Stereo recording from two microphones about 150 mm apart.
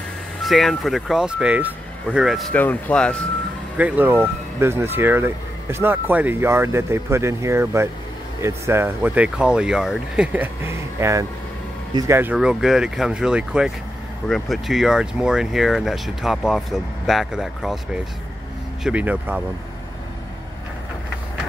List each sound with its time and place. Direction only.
0.4 s speech: centre (ahead or behind)
2.5 s speech: 10° left (ahead or behind)
3.7 s speech: 10° right (ahead or behind)